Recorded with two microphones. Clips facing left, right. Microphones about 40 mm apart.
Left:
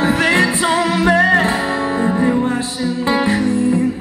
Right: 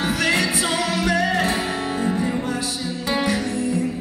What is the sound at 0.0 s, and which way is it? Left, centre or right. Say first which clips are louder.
Music: left 6 dB; left.